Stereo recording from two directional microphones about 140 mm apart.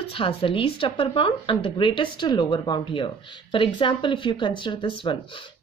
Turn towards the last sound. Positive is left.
turn(degrees=35)  # may be behind; listen again after turning